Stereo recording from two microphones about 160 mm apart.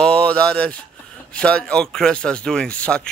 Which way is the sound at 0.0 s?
10° left (ahead or behind).